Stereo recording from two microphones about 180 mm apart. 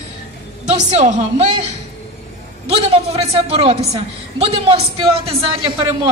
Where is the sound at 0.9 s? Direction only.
40° right (ahead or behind).